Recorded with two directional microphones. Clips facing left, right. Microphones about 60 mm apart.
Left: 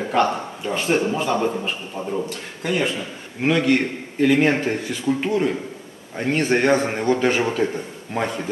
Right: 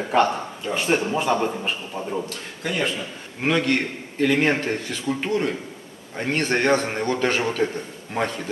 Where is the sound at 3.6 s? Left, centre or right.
Centre.